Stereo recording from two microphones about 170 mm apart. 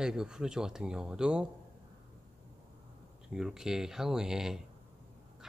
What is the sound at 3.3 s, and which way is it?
A man's voice, 5° right (ahead or behind).